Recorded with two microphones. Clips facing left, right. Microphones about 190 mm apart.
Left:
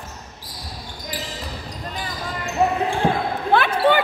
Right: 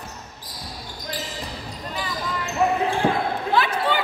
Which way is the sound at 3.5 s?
60° left (ahead or behind).